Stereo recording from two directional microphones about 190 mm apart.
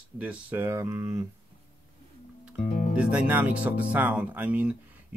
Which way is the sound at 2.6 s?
40° left (ahead or behind).